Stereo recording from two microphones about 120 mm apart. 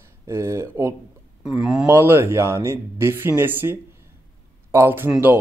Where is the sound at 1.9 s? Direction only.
20° right (ahead or behind).